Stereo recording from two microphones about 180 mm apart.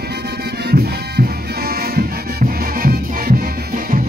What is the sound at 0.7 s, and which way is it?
Music, 60° right (ahead or behind).